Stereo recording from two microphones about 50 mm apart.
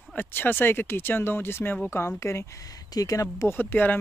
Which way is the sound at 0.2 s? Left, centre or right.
Left.